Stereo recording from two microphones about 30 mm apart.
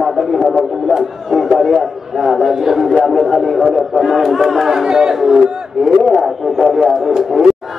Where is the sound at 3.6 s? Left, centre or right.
Centre.